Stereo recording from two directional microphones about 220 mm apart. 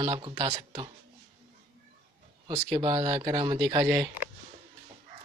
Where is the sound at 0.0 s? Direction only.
20° right (ahead or behind).